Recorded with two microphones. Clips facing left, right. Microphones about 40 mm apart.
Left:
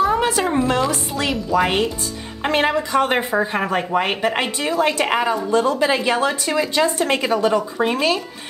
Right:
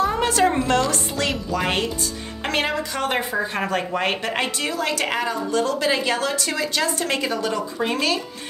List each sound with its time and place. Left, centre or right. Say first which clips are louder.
0.0 s a woman's voice: left 1 dB; centre; by 3.4 s left
3.5 s a woman's voice: left 4 dB; centre